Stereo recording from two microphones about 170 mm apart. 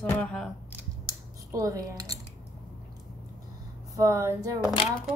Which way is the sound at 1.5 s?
20° right (ahead or behind).